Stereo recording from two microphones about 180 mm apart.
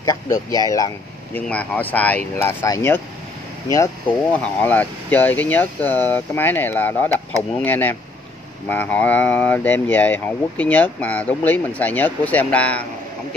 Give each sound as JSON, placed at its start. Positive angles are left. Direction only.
{"t": 0.7, "sound": "speech", "side_deg": 20}
{"t": 1.5, "sound": "speech", "side_deg": 10}